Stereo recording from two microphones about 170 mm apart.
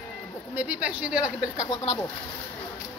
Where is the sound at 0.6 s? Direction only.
10° right (ahead or behind).